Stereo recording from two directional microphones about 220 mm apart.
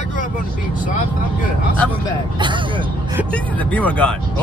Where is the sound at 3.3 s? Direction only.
5° left (ahead or behind).